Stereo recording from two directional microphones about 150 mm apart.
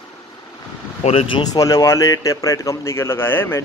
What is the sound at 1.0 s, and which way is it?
Speech, 40° left (ahead or behind).